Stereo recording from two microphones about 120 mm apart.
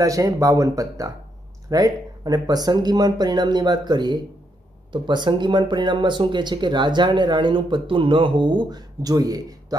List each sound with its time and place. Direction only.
0.0 s speech: 30° right (ahead or behind)